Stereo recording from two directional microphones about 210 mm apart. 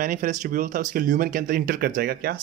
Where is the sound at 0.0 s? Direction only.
40° right (ahead or behind).